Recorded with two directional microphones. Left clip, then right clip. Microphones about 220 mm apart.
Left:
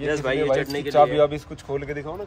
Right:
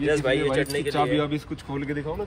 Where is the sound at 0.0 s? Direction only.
45° left (ahead or behind).